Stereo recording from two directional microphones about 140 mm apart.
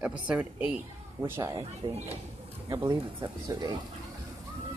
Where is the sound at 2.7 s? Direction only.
25° right (ahead or behind).